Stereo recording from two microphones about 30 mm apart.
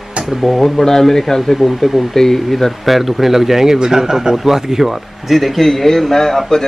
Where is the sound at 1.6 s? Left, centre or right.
Centre.